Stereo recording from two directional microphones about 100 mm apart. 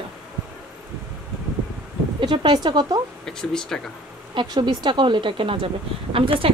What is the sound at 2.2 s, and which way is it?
Speech, 50° right (ahead or behind).